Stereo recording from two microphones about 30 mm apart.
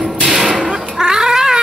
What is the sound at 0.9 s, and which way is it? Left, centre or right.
Cat, right.